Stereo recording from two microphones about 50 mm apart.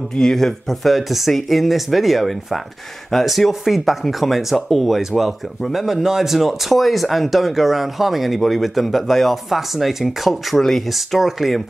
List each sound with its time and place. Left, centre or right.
0.1 s speech: centre